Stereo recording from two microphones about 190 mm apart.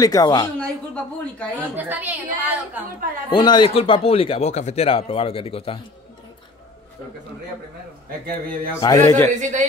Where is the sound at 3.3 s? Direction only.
25° left (ahead or behind).